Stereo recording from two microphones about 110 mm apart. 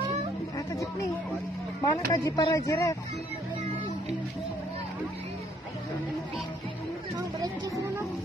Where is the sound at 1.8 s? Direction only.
35° left (ahead or behind).